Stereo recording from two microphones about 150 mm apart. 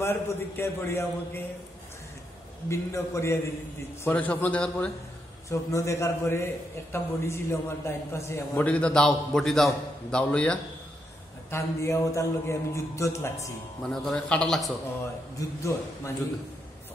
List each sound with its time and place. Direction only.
0.0 s a man's voice: 15° left (ahead or behind)
2.7 s a man's voice: 20° left (ahead or behind)
5.5 s a man's voice: 20° left (ahead or behind)
11.5 s a man's voice: 20° left (ahead or behind)
13.8 s a man's voice: 5° left (ahead or behind)
15.3 s a man's voice: 20° left (ahead or behind)